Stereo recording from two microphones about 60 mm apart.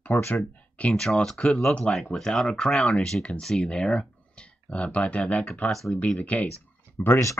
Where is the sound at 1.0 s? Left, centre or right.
Centre; by 6.5 s left.